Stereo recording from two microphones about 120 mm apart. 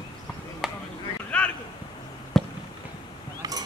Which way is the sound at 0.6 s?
5° right (ahead or behind).